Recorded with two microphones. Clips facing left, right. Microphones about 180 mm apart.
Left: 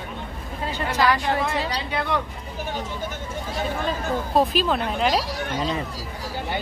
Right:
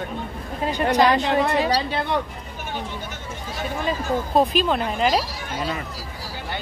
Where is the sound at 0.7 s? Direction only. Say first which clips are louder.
Right 4 dB; 20° right (ahead or behind).